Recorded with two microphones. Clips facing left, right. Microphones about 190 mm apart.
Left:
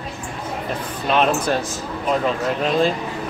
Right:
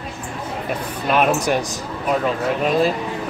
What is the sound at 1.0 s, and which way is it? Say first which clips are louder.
Speech: right 1 dB; 10° right (ahead or behind).